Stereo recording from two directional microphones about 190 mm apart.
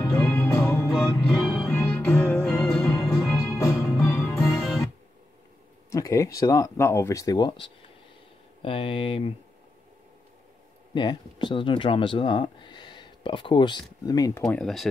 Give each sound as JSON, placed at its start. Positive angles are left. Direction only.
{"t": 0.0, "sound": "music", "side_deg": 10}
{"t": 3.4, "sound": "music", "side_deg": 15}
{"t": 5.9, "sound": "speech", "side_deg": 15}
{"t": 8.6, "sound": "speech", "side_deg": 30}
{"t": 11.0, "sound": "speech", "side_deg": 25}
{"t": 14.4, "sound": "speech", "side_deg": 5}